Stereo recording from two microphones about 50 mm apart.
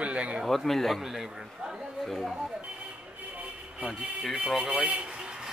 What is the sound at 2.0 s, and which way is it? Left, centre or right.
Speech, centre.